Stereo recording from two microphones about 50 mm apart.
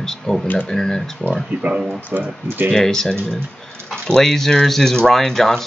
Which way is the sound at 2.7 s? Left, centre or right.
Centre.